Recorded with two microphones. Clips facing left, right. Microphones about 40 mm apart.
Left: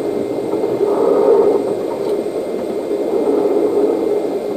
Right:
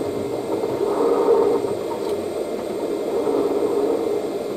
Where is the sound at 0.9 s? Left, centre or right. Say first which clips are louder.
Left 5 dB; centre.